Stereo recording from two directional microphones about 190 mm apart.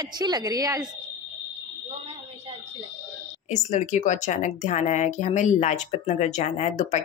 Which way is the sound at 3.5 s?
40° left (ahead or behind).